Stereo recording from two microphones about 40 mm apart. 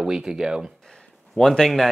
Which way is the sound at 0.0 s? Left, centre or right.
Centre.